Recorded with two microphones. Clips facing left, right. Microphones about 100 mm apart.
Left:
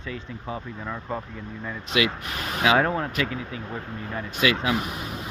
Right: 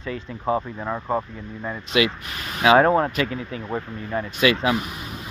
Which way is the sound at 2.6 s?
40° right (ahead or behind).